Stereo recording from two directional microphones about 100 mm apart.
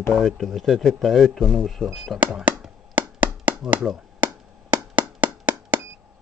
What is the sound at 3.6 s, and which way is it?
Chop, 5° right (ahead or behind).